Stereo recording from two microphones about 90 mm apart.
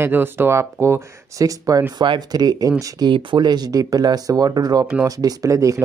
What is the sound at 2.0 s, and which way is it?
Speech, 50° right (ahead or behind).